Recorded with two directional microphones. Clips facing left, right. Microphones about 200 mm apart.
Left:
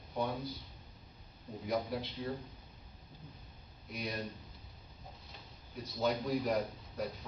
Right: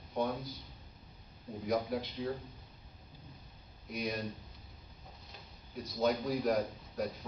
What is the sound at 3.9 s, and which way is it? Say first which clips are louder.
Speech: right 4 dB; centre (ahead or behind).